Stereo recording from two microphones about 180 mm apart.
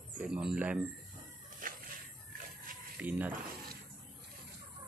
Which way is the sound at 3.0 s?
10° right (ahead or behind).